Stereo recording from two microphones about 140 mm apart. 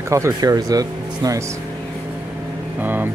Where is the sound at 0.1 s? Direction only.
20° right (ahead or behind).